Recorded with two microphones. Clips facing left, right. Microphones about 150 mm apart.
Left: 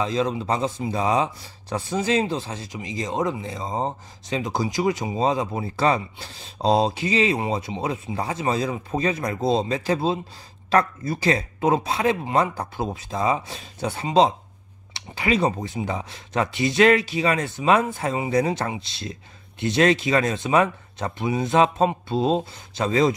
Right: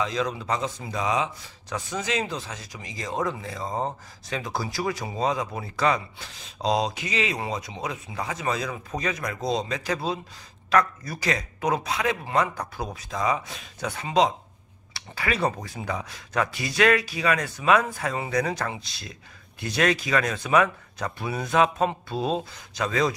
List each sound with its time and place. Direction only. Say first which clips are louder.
0.0 s speech: left 4 dB; 30° left (ahead or behind)